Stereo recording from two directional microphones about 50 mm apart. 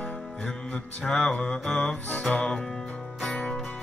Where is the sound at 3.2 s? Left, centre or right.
Left.